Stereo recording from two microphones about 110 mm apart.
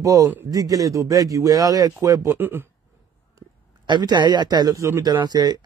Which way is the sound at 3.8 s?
45° right (ahead or behind).